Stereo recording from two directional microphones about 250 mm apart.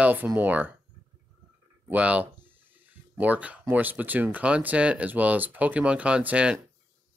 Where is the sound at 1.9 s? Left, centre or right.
Centre.